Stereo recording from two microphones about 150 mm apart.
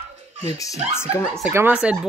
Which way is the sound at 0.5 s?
20° left (ahead or behind).